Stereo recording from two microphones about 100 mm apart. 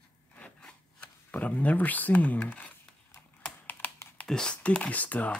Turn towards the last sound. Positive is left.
turn(degrees=15)  # may be behind; listen again after turning